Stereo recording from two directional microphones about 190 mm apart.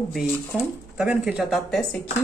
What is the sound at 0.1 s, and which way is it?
Speech, centre (ahead or behind).